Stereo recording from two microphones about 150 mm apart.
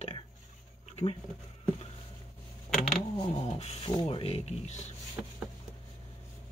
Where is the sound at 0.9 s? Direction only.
40° left (ahead or behind).